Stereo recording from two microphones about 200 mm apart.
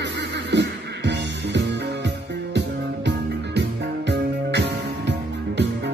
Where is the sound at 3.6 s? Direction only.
60° right (ahead or behind).